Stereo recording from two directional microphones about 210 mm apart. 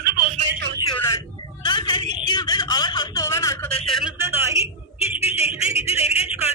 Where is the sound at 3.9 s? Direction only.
Centre (ahead or behind).